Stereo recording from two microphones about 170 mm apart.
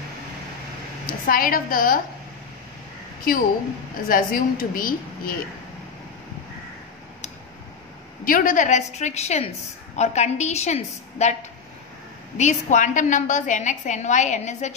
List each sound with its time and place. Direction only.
1.0 s a woman's voice: 55° left (ahead or behind)
4.1 s a woman's voice: 55° left (ahead or behind)
8.3 s a woman's voice: 50° left (ahead or behind)
12.4 s a woman's voice: 45° left (ahead or behind)